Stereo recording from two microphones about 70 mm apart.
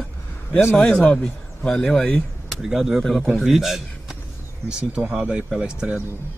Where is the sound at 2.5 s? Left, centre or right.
Centre.